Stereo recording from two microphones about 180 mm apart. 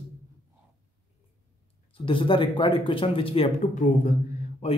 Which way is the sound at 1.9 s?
30° left (ahead or behind).